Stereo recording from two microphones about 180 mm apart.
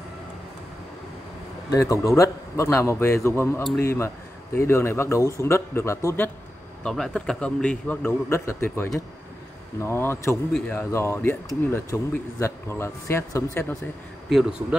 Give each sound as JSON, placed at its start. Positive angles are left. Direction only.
{"t": 1.7, "sound": "a man's voice", "side_deg": 15}
{"t": 14.3, "sound": "speech", "side_deg": -5}